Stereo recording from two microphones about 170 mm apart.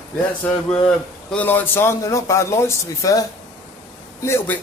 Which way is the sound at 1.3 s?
10° left (ahead or behind).